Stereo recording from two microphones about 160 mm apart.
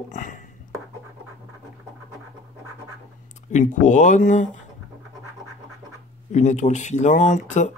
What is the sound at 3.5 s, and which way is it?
Speech, 50° left (ahead or behind).